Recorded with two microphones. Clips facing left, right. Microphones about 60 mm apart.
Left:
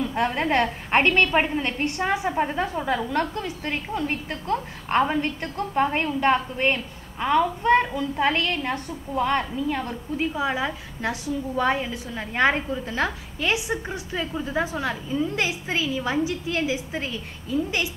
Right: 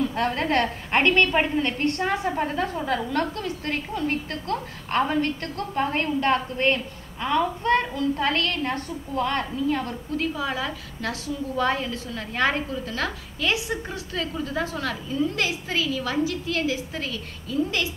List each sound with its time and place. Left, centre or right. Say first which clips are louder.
0.1 s a woman's voice: left 1 dB; centre